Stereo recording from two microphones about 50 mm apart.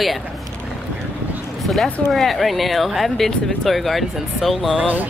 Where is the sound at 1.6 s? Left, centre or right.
Centre.